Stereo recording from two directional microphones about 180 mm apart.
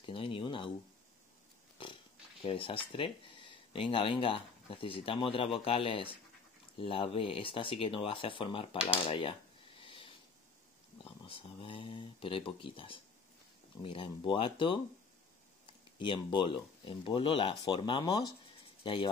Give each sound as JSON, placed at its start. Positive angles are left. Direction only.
{"t": 0.0, "sound": "speech", "side_deg": 30}
{"t": 2.4, "sound": "speech", "side_deg": 30}
{"t": 9.8, "sound": "a sound", "side_deg": 30}
{"t": 11.2, "sound": "speech", "side_deg": 30}
{"t": 16.0, "sound": "speech", "side_deg": 25}